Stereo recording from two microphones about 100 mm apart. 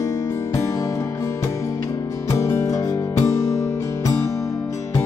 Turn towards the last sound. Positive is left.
turn(degrees=30)  # may be behind; listen again after turning